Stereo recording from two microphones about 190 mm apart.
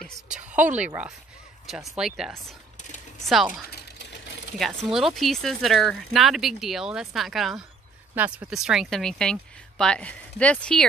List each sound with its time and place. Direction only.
0.0 s a sound: 5° right (ahead or behind)
1.7 s speech: centre (ahead or behind)
3.7 s sewing machine: 60° left (ahead or behind)
4.6 s speech: centre (ahead or behind)